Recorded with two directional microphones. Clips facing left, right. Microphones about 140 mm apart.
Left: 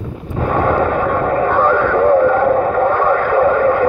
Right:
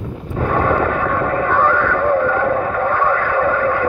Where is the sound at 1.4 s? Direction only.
15° left (ahead or behind).